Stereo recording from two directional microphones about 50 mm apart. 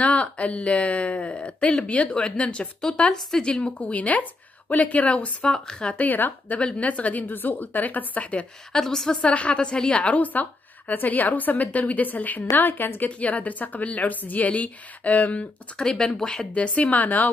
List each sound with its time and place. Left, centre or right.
0.0 s a woman's voice: left
5.9 s a woman's voice: left
6.6 s a woman's voice: left
8.7 s speech: centre
9.1 s a woman's voice: left
15.8 s speech: centre
16.5 s a woman's voice: left